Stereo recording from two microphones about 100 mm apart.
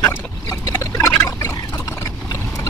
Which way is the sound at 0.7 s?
25° left (ahead or behind).